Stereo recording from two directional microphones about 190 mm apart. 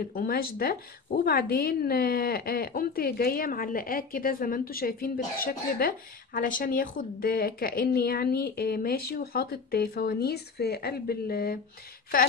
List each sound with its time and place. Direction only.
0.0 s speech: 50° left (ahead or behind)